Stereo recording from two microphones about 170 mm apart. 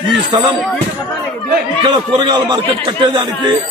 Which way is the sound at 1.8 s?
25° right (ahead or behind).